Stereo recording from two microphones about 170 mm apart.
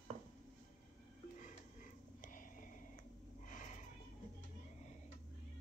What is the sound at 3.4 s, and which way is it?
Snort, 50° left (ahead or behind).